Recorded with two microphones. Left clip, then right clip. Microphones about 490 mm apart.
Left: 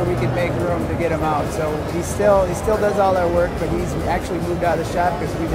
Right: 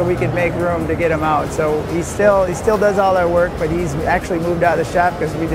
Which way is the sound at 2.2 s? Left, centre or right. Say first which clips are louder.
Right 2 dB; right.